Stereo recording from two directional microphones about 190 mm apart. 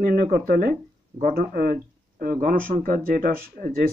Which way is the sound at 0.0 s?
55° right (ahead or behind).